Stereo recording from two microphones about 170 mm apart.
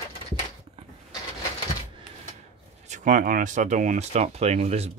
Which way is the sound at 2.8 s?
45° right (ahead or behind).